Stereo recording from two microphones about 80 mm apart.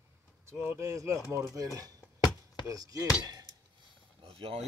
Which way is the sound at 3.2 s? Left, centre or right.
Right.